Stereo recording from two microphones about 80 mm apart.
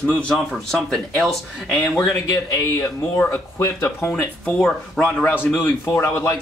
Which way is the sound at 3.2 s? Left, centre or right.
Left.